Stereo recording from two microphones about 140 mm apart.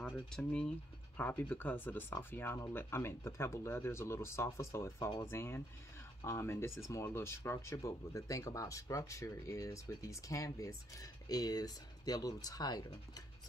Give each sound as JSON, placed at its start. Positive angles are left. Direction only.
{"t": 0.0, "sound": "speech", "side_deg": 10}